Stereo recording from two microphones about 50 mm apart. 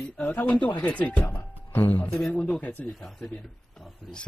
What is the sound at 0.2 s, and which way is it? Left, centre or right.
Speech, left.